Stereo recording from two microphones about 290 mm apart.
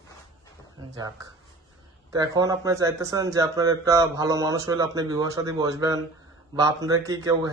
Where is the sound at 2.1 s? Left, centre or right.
Centre.